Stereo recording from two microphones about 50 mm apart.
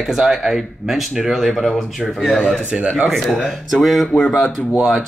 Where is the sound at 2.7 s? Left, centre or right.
Right.